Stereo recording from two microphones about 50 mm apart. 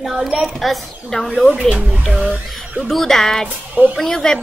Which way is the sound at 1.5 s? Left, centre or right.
Right.